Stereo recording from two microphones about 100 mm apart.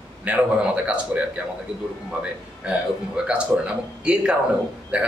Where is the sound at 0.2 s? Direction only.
15° right (ahead or behind).